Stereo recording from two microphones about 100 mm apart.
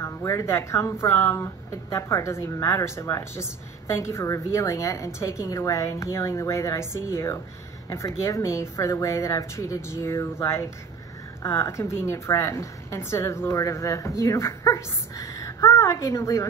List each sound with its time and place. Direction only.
0.0 s a woman's voice: 30° left (ahead or behind)